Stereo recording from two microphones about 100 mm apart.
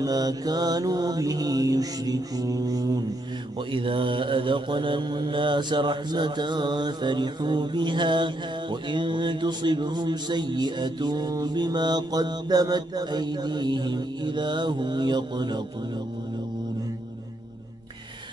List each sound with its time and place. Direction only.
0.0 s mantra: 40° right (ahead or behind)
3.7 s mantra: 60° right (ahead or behind)